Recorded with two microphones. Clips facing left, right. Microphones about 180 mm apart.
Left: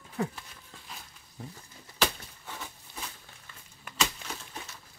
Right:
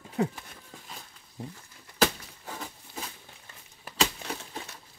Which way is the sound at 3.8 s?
35° right (ahead or behind).